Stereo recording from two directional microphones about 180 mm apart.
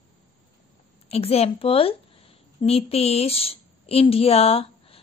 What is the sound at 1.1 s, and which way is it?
A woman's voice, 35° left (ahead or behind).